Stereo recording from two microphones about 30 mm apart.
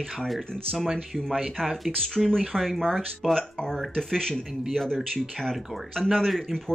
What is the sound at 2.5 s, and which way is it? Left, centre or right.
Speech, centre.